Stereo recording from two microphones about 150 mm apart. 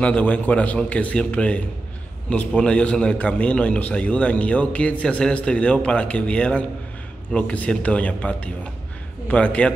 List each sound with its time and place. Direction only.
0.0 s a man's voice: 10° left (ahead or behind)